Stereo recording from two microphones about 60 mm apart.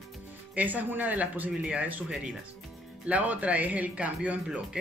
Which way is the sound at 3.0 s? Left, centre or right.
Right.